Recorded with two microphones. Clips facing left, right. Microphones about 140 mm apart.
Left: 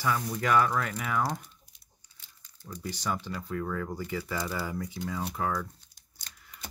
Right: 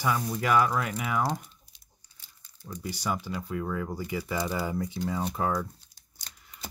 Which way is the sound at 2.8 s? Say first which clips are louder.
Right 1 dB; 10° right (ahead or behind).